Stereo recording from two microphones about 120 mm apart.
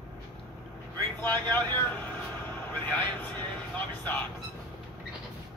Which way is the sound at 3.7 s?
15° left (ahead or behind).